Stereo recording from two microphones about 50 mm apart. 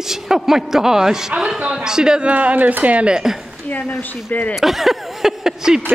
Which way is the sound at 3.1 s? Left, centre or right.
Centre.